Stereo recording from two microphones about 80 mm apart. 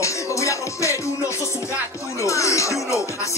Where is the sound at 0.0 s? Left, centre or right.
Left.